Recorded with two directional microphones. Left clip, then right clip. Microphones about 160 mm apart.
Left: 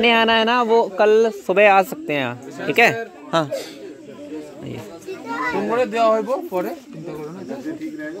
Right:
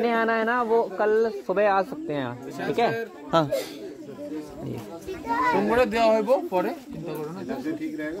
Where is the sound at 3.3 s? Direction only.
Centre (ahead or behind).